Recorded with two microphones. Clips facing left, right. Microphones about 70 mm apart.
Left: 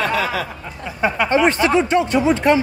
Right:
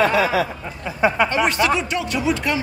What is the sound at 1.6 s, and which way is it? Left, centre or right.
Speech, left.